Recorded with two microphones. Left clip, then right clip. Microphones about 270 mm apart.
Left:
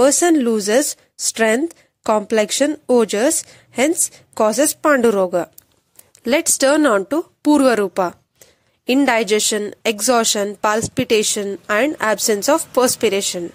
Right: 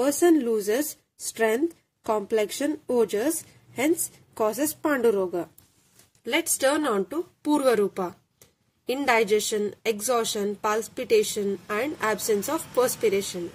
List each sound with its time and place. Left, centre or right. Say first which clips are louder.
0.0 s speech: left 7 dB; left